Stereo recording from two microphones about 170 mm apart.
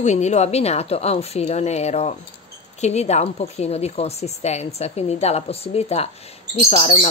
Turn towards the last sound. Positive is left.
turn(degrees=35)  # may be behind; listen again after turning